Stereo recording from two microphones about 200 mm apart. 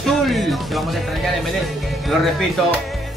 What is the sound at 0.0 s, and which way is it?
Music, centre (ahead or behind).